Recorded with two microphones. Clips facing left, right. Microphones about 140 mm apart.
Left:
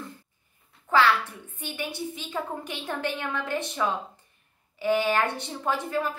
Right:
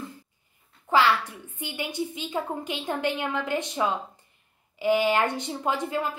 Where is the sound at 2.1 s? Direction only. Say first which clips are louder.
Right 2 dB; 20° right (ahead or behind).